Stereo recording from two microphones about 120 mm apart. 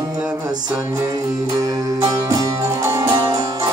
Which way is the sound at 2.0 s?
30° right (ahead or behind).